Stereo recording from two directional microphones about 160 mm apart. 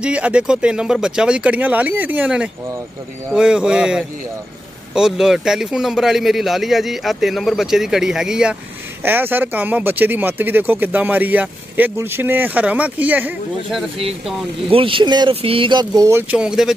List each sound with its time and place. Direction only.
0.0 s a man's voice: 5° right (ahead or behind)
14.7 s speech: 35° right (ahead or behind); by 16.7 s 5° right (ahead or behind)